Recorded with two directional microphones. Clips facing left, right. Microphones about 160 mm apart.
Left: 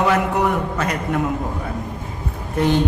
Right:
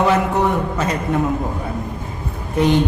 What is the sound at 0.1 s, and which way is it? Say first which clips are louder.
A man's voice: right 1 dB; 25° right (ahead or behind).